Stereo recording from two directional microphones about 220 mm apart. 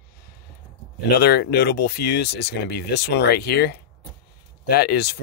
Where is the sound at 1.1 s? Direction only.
45° left (ahead or behind).